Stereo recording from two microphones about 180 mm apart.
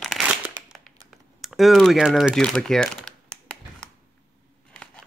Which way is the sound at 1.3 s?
Centre (ahead or behind).